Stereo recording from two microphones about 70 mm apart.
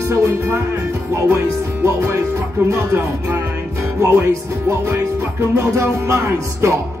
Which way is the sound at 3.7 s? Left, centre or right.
Right.